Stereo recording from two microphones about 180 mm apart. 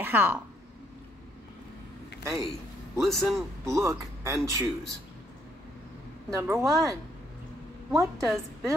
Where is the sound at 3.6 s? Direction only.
15° right (ahead or behind).